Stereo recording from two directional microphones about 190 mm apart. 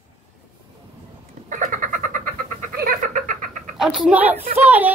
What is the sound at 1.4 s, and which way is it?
Cat, 40° right (ahead or behind).